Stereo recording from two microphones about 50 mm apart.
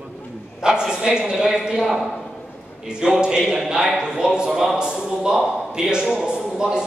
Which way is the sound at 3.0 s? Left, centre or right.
Centre.